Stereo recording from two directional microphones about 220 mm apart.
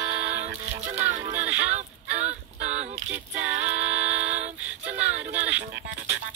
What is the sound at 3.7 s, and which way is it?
Music, 5° right (ahead or behind).